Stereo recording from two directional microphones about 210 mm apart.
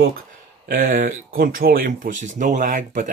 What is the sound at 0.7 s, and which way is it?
Speech, 40° right (ahead or behind).